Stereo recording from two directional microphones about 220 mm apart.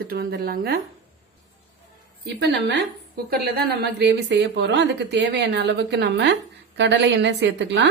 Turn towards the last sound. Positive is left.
turn(degrees=-55)  # may be behind; listen again after turning